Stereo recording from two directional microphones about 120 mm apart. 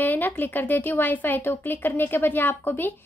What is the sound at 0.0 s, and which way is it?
A woman's voice, 15° left (ahead or behind).